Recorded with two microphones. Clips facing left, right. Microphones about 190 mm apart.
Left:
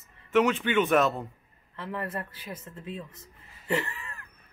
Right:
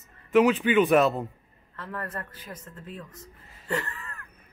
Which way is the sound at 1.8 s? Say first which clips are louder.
Left 2 dB; 20° left (ahead or behind).